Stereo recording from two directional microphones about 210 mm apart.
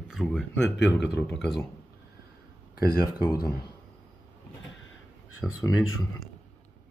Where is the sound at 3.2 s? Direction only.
20° left (ahead or behind).